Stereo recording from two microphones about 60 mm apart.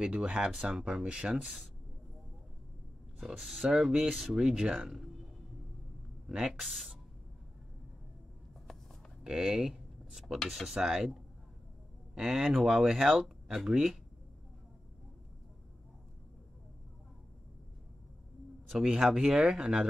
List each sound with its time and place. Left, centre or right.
0.0 s speech: centre
3.2 s speech: centre
4.4 s speech: centre
6.2 s speech: centre
6.6 s speech: centre
9.2 s a sound: centre
10.5 s speech: centre
18.7 s speech: centre